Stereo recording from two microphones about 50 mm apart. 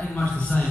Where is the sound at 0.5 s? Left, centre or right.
Left.